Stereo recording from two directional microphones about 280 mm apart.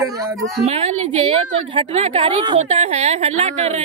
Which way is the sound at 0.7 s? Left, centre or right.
Right.